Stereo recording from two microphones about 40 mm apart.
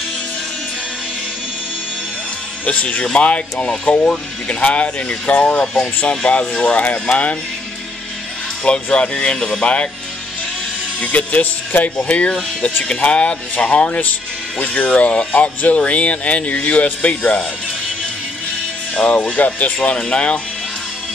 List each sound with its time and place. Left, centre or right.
2.6 s speech: left
8.6 s speech: left
11.0 s speech: left
18.9 s speech: left